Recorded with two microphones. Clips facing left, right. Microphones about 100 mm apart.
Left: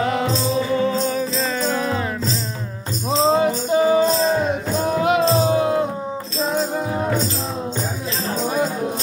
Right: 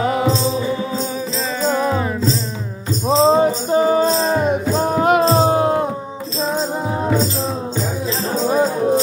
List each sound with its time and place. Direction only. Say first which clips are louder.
1.0 s music: left 2 dB; 10° right (ahead or behind)
3.1 s music: right 4 dB; 35° right (ahead or behind)
8.4 s music: right 5 dB; 35° right (ahead or behind)